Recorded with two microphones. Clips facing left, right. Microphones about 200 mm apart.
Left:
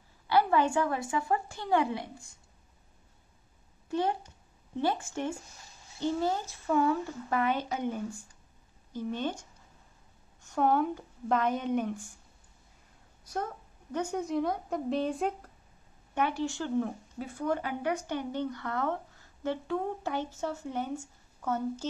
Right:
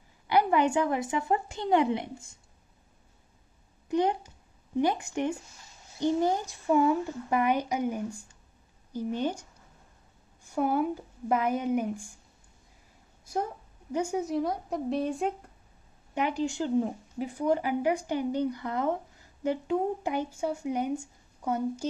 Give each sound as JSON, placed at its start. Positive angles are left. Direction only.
{"t": 0.3, "sound": "a woman's voice", "side_deg": -15}
{"t": 3.9, "sound": "speech", "side_deg": -15}
{"t": 10.4, "sound": "speech", "side_deg": -10}
{"t": 13.2, "sound": "a sound", "side_deg": -10}
{"t": 13.9, "sound": "speech", "side_deg": -10}
{"t": 16.2, "sound": "speech", "side_deg": -15}